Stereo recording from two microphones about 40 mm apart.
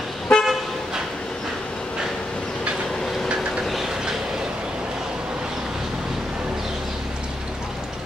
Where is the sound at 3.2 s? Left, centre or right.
Centre.